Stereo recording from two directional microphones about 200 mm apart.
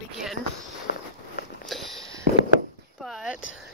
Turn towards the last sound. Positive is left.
turn(degrees=0)  # may be behind; listen again after turning